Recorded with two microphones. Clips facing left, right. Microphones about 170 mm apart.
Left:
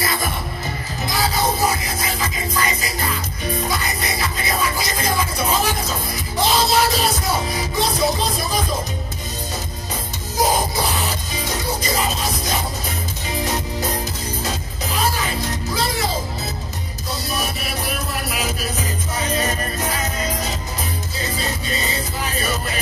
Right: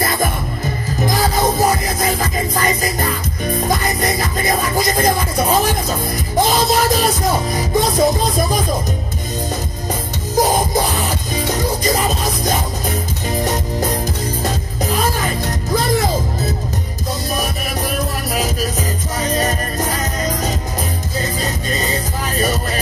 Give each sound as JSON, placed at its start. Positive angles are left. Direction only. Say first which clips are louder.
{"t": 0.0, "sound": "music", "louder": "right 5 dB", "side_deg": -50}
{"t": 19.1, "sound": "music", "louder": "right 3 dB", "side_deg": -40}